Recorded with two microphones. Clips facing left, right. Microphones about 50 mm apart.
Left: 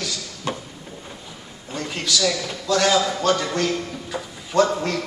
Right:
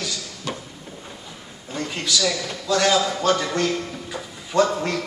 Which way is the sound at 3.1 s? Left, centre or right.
Centre.